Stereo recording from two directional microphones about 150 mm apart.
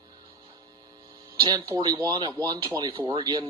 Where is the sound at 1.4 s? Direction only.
30° right (ahead or behind).